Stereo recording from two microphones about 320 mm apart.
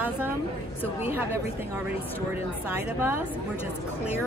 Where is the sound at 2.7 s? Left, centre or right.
Centre.